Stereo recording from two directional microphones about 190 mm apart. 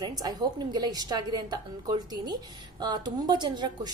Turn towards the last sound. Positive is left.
turn(degrees=-25)  # may be behind; listen again after turning